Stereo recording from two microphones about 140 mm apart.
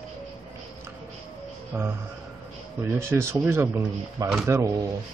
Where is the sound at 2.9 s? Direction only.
20° right (ahead or behind).